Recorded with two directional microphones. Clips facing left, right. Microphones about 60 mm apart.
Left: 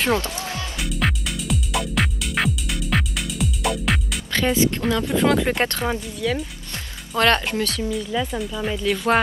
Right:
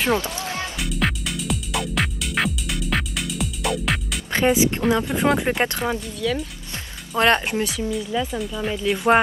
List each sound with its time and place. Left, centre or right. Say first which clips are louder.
0.7 s music: left 1 dB; centre
4.3 s speech: right 2 dB; right
5.9 s speech: even; centre
7.2 s speech: even; right
7.8 s speech: even; centre
8.9 s speech: right 3 dB; centre